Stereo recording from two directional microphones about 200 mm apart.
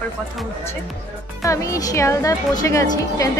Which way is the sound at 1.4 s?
15° left (ahead or behind).